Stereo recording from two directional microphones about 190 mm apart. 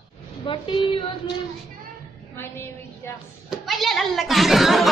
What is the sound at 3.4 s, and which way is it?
Speech, centre (ahead or behind).